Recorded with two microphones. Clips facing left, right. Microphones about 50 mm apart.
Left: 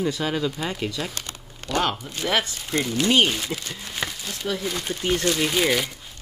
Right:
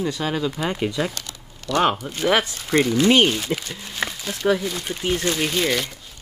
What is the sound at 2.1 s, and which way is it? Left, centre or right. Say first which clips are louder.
Speech: right 2 dB; centre.